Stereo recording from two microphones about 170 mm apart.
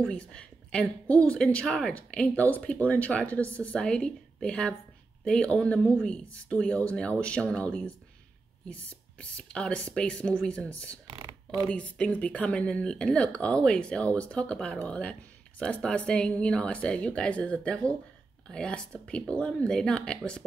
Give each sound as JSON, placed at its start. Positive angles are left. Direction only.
{"t": 0.0, "sound": "a woman's voice", "side_deg": 5}
{"t": 9.2, "sound": "speech", "side_deg": 5}
{"t": 11.1, "sound": "mechanisms", "side_deg": -25}
{"t": 11.7, "sound": "speech", "side_deg": 5}